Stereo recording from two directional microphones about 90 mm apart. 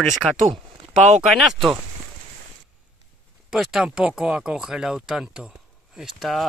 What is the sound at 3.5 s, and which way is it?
Speech, 5° right (ahead or behind).